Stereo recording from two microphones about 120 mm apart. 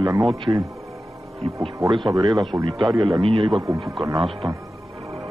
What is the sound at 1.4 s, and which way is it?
Speech, 60° right (ahead or behind).